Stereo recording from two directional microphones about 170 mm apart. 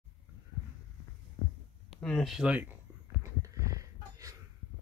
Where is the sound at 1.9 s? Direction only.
5° left (ahead or behind); by 4.4 s 20° right (ahead or behind).